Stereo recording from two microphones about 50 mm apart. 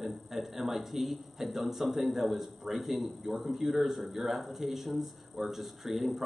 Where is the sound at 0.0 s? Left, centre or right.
Centre.